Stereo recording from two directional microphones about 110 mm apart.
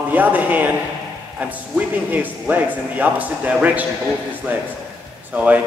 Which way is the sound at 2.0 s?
15° right (ahead or behind).